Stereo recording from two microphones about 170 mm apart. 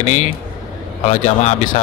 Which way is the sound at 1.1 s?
40° left (ahead or behind).